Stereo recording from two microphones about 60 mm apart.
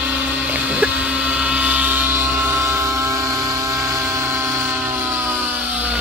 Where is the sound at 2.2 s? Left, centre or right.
Right.